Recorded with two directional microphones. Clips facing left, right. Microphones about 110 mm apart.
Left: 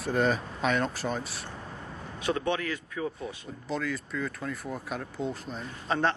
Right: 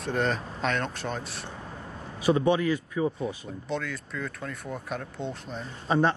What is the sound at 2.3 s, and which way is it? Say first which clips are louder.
Speech: right 6 dB; 15° right (ahead or behind).